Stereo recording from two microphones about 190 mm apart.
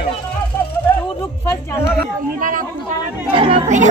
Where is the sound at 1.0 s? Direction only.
10° left (ahead or behind).